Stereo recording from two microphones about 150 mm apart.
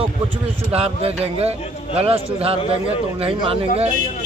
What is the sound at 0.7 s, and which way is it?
A man's voice, 40° right (ahead or behind).